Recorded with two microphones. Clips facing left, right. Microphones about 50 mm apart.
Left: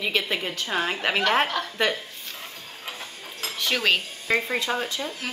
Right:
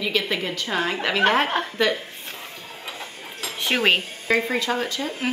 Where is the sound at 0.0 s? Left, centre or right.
Left.